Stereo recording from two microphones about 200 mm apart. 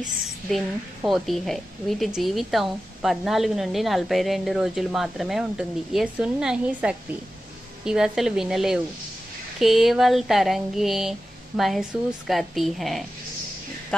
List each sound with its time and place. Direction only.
0.5 s a woman's voice: centre (ahead or behind)